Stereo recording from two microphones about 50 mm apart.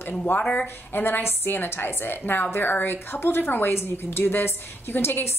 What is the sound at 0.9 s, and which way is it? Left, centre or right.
A woman's voice, left.